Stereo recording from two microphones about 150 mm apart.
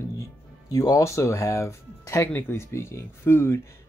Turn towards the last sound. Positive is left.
turn(degrees=15)  # may be behind; listen again after turning